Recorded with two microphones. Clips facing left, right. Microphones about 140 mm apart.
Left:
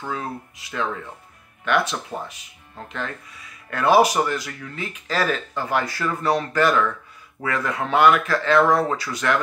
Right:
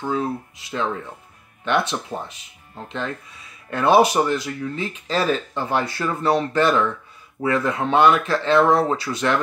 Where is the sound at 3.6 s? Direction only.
25° right (ahead or behind).